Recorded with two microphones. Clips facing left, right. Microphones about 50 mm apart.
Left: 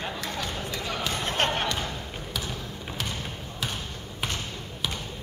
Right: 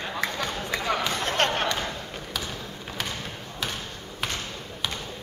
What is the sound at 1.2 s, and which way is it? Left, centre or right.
Music, centre.